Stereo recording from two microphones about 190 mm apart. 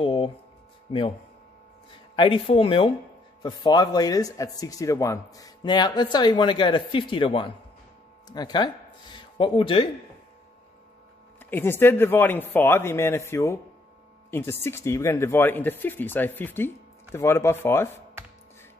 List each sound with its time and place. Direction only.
0.0 s a sound: 25° left (ahead or behind)
0.9 s speech: 25° left (ahead or behind)
2.1 s speech: 25° left (ahead or behind)
11.3 s speech: 10° left (ahead or behind)